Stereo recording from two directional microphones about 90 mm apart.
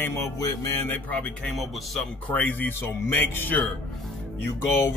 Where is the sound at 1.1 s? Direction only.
10° left (ahead or behind).